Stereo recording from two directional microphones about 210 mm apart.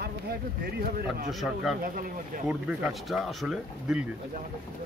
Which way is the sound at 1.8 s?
40° right (ahead or behind).